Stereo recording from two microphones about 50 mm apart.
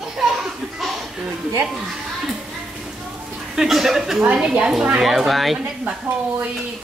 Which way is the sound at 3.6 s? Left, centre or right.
Centre.